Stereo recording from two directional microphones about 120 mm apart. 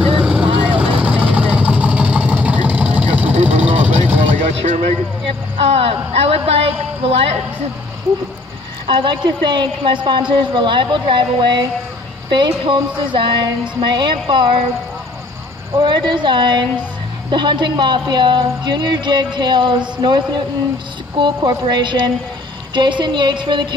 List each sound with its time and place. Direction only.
0.0 s vehicle: 5° right (ahead or behind)
3.3 s vehicle: 65° right (ahead or behind)
3.6 s vehicle: 15° right (ahead or behind)
4.4 s a sound: 70° right (ahead or behind)
5.8 s speech: 55° right (ahead or behind)
8.8 s a woman's voice: 40° right (ahead or behind)
12.6 s a woman's voice: 45° right (ahead or behind)
15.8 s a woman's voice: 40° right (ahead or behind)